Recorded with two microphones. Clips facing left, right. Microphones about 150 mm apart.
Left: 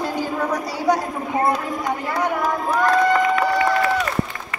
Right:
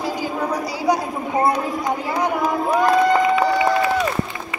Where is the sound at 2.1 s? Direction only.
15° right (ahead or behind).